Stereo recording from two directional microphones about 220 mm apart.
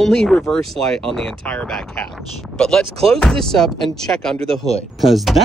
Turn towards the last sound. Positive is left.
turn(degrees=0)  # may be behind; listen again after turning